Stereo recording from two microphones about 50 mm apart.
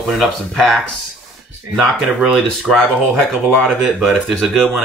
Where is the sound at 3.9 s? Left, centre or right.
Centre.